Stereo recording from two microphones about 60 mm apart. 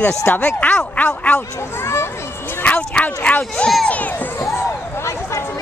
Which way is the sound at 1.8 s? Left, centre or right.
Left.